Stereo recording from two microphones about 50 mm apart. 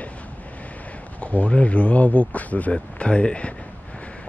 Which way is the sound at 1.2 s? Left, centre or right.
Left.